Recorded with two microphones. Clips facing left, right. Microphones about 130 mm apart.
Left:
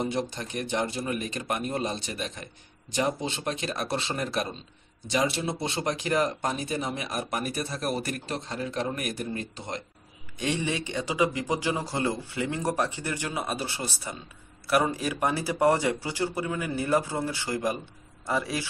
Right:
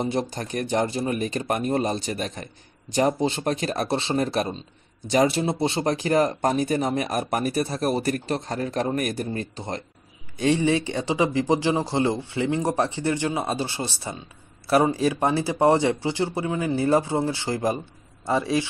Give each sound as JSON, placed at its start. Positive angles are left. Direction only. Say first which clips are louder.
{"t": 0.0, "sound": "speech", "louder": "right 4 dB", "side_deg": -35}